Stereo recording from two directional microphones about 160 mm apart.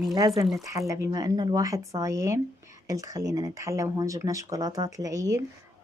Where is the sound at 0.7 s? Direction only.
15° right (ahead or behind).